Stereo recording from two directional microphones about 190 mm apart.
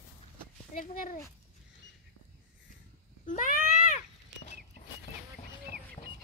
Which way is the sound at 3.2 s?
45° left (ahead or behind).